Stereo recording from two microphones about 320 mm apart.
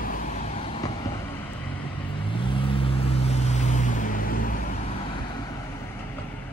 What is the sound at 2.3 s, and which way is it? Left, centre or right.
Vehicle, centre.